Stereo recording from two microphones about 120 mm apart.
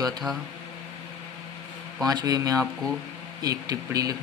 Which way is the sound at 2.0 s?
35° right (ahead or behind).